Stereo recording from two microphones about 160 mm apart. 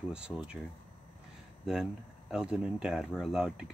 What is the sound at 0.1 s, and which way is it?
Speech, 5° right (ahead or behind).